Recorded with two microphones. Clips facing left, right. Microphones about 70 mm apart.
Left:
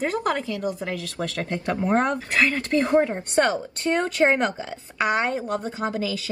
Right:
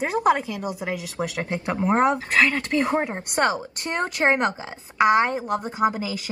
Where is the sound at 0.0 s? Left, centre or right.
Centre.